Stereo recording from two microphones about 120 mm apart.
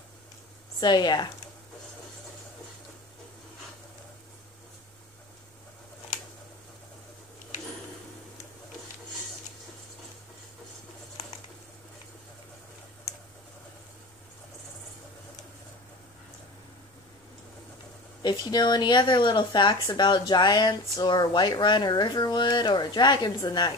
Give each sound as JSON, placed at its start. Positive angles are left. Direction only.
{"t": 0.7, "sound": "speech", "side_deg": 35}
{"t": 18.2, "sound": "speech", "side_deg": 35}